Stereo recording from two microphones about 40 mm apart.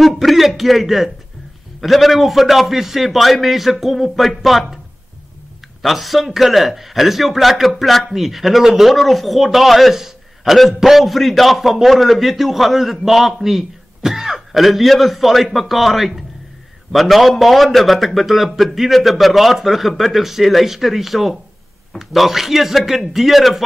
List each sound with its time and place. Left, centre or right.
0.0 s a man's voice: centre
5.8 s a man's voice: centre